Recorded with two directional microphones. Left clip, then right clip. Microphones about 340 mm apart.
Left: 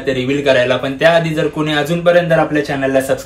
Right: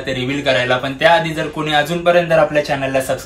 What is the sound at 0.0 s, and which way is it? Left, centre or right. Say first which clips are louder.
Speech: left 4 dB; centre.